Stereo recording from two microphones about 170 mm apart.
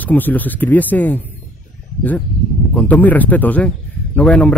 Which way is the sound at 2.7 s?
10° left (ahead or behind).